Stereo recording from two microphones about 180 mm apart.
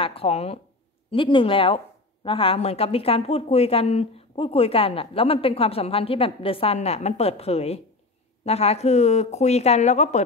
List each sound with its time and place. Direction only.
0.0 s speech: 30° left (ahead or behind)